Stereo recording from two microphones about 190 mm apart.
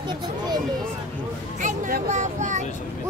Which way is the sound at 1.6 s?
40° right (ahead or behind).